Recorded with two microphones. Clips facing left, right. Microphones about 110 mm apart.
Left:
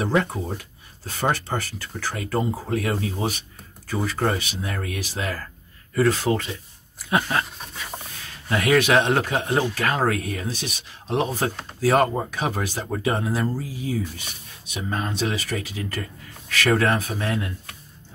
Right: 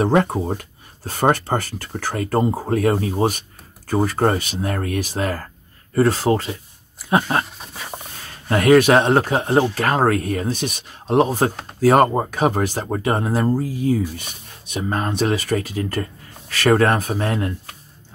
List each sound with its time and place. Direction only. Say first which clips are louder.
0.0 s speech: right 6 dB; 50° right (ahead or behind)
5.9 s speech: right 4 dB; 35° right (ahead or behind)